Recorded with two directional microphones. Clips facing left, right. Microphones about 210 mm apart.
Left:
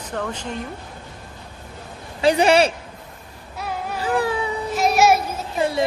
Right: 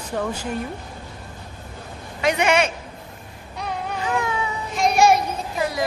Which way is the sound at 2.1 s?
30° left (ahead or behind).